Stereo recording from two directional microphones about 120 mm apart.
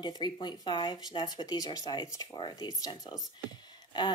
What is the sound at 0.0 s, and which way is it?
Speech, 40° left (ahead or behind).